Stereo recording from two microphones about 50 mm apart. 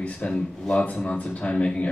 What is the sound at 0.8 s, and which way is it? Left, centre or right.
Speech, left.